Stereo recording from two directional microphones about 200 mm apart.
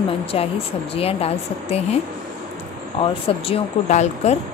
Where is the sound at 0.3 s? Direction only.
30° left (ahead or behind).